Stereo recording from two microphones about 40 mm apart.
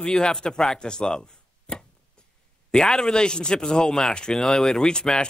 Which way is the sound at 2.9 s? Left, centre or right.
Centre.